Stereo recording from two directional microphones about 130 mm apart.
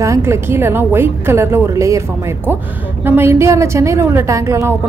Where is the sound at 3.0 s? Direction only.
20° right (ahead or behind).